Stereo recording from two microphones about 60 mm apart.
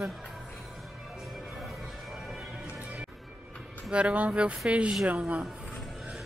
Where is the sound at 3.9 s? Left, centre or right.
Right.